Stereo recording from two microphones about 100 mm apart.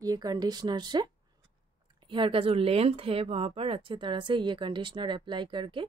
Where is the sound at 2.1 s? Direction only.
60° right (ahead or behind).